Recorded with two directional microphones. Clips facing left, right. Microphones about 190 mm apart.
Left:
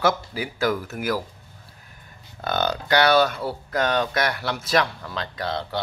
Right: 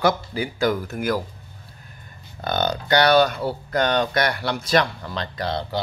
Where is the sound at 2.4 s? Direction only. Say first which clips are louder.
Right 1 dB; centre (ahead or behind).